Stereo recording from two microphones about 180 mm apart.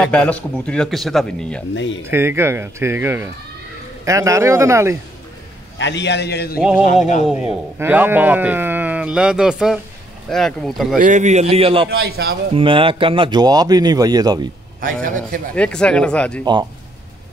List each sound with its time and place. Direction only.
0.0 s a man's voice: 5° left (ahead or behind)
2.0 s a man's voice: 15° right (ahead or behind)
5.8 s a man's voice: 80° left; by 6.6 s 65° left (ahead or behind)
7.2 s a man's voice: 10° right (ahead or behind)
11.0 s a man's voice: 45° right (ahead or behind)
11.9 s a man's voice: 60° right (ahead or behind)
12.5 s speech: 30° right (ahead or behind)
14.8 s a man's voice: 50° right (ahead or behind)
15.5 s a man's voice: 5° left (ahead or behind)